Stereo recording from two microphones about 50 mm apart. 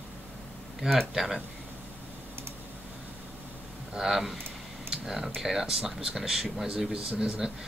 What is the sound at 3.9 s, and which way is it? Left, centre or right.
Speech, centre.